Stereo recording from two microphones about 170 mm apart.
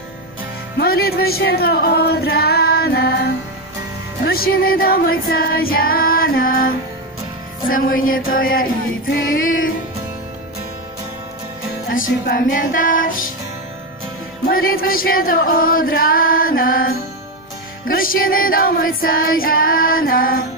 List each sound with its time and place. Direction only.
0.7 s music: 65° left (ahead or behind)
4.3 s music: 60° left (ahead or behind)
7.7 s music: 55° left (ahead or behind)
11.9 s music: 55° left (ahead or behind)
14.5 s music: 60° left (ahead or behind)